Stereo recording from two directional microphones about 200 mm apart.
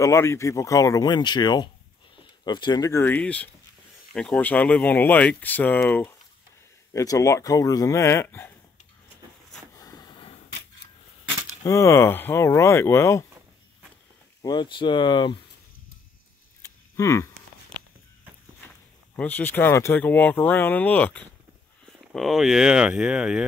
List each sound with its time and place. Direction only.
0.0 s speech: 15° left (ahead or behind)
9.8 s a sound: 20° left (ahead or behind)
11.6 s speech: 15° left (ahead or behind)
14.4 s speech: 20° left (ahead or behind)
16.9 s speech: 15° left (ahead or behind)
19.1 s speech: 10° left (ahead or behind)